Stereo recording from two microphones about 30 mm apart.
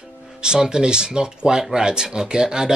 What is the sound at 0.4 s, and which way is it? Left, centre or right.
Speech, right.